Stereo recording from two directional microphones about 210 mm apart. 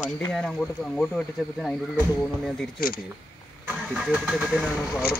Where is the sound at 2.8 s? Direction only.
45° left (ahead or behind).